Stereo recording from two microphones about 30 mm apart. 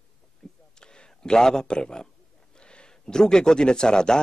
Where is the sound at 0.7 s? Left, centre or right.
Left.